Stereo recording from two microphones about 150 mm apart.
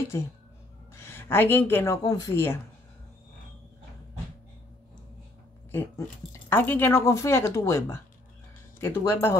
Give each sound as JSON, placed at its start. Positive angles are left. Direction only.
{"t": 0.1, "sound": "speech", "side_deg": 20}
{"t": 5.7, "sound": "speech", "side_deg": 15}